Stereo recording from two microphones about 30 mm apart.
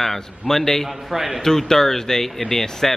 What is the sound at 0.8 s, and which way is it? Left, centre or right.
Speech, centre.